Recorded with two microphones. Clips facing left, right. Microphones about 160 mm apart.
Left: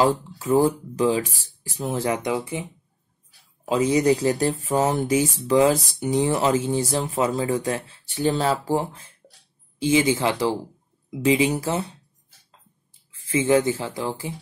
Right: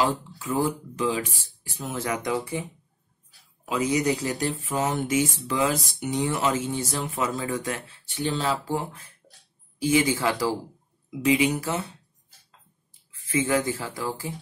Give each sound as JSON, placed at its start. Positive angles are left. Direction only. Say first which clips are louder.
{"t": 0.1, "sound": "speech", "louder": "left 8 dB", "side_deg": 35}
{"t": 3.6, "sound": "speech", "louder": "left 5 dB", "side_deg": 30}
{"t": 9.8, "sound": "speech", "louder": "left 3 dB", "side_deg": 25}
{"t": 13.3, "sound": "speech", "louder": "left 5 dB", "side_deg": 25}